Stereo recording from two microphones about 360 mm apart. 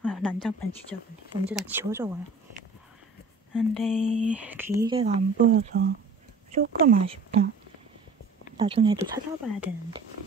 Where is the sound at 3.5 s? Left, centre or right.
Centre.